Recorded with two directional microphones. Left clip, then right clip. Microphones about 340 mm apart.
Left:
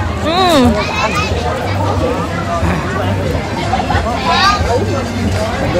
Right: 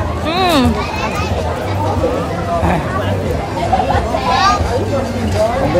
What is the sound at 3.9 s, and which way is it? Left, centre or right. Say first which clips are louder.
Hubbub: left 1 dB; right.